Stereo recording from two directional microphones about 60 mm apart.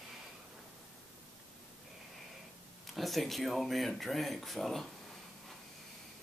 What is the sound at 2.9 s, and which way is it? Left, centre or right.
Speech, centre.